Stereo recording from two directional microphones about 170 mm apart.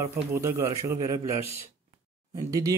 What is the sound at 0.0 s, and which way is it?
Speech, 15° right (ahead or behind).